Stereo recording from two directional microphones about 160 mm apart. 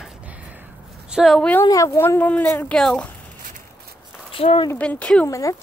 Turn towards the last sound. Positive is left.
turn(degrees=20)  # may be behind; listen again after turning